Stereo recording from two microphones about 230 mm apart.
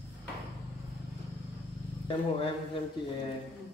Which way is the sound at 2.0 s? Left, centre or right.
Left.